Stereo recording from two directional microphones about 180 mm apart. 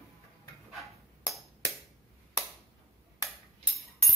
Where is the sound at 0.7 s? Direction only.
Centre (ahead or behind).